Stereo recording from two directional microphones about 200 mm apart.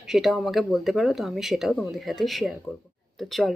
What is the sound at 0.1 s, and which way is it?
Speech, centre (ahead or behind).